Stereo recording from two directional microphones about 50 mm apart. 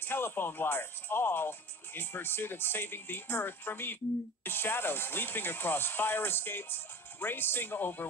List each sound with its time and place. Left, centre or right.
0.0 s speech: left